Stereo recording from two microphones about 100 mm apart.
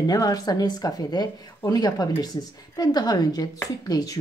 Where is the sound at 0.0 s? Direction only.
40° left (ahead or behind).